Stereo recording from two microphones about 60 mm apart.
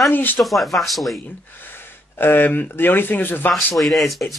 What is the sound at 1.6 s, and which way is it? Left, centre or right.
Speech, left.